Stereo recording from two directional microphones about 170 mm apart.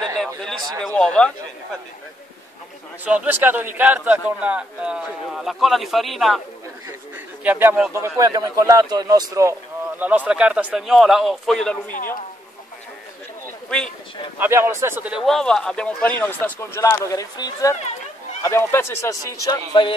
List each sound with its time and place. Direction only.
0.4 s a man's voice: centre (ahead or behind)
3.1 s speech: 10° right (ahead or behind)
7.4 s speech: 10° right (ahead or behind)
13.7 s speech: 5° left (ahead or behind)
14.4 s speech: 15° right (ahead or behind)
15.2 s speech: 5° left (ahead or behind); by 20.0 s 30° left (ahead or behind)